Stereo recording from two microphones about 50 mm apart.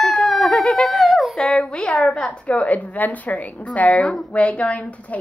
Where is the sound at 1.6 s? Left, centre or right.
Centre.